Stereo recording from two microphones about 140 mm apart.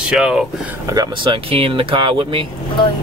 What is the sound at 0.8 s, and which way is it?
Speech, 25° right (ahead or behind).